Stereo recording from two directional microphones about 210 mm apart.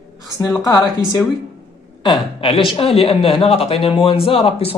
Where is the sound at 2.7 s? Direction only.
30° left (ahead or behind).